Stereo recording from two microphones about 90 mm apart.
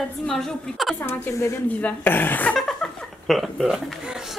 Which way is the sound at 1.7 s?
15° left (ahead or behind).